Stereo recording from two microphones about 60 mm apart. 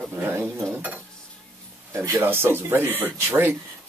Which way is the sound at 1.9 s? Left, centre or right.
Right.